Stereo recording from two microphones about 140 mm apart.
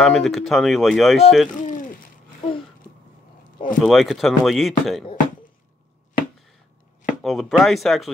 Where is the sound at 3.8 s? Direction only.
Centre (ahead or behind).